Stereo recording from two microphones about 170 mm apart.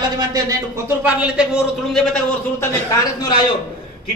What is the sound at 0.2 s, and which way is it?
Speech, 20° right (ahead or behind).